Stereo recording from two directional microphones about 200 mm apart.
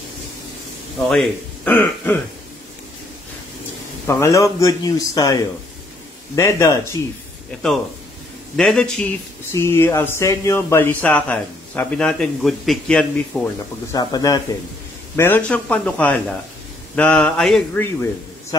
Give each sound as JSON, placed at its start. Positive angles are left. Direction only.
{"t": 1.0, "sound": "speech", "side_deg": 5}
{"t": 4.1, "sound": "speech", "side_deg": 15}
{"t": 7.5, "sound": "mantra", "side_deg": 5}
{"t": 9.5, "sound": "speech", "side_deg": 15}
{"t": 13.9, "sound": "speech", "side_deg": 20}
{"t": 16.9, "sound": "mantra", "side_deg": 5}
{"t": 18.5, "sound": "speech", "side_deg": 20}